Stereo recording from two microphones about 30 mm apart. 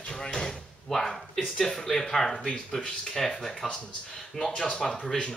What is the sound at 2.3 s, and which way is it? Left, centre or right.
Speech, left.